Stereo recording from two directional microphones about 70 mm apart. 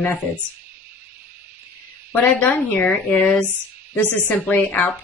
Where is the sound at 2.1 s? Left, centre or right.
Left.